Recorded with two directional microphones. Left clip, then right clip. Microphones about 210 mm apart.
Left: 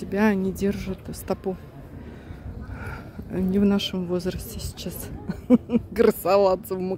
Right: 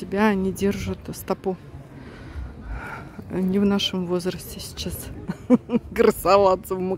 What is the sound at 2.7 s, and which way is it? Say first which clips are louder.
A man's voice: right 4 dB; 10° right (ahead or behind).